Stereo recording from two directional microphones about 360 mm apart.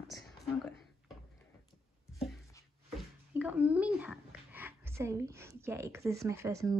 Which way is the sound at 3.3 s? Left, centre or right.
Centre.